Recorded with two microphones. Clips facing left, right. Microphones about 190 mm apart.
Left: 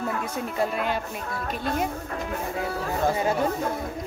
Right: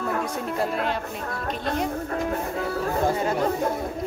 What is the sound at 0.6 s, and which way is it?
Speech, 5° left (ahead or behind).